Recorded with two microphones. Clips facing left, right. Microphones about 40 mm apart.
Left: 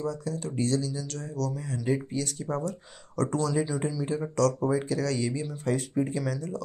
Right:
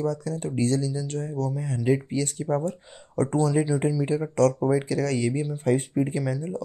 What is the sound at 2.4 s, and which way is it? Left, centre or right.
Speech, right.